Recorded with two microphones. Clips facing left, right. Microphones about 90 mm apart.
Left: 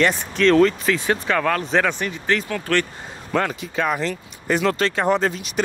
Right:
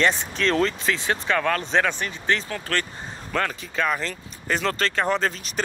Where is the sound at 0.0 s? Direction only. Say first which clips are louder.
Left 4 dB; 30° right (ahead or behind).